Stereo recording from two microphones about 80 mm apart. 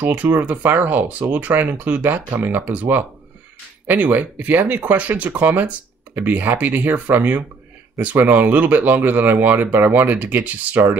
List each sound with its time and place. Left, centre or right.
0.1 s speech: right